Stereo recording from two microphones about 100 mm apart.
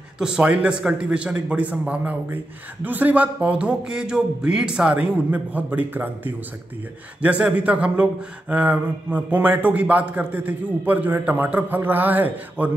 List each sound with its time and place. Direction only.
0.2 s speech: 10° right (ahead or behind)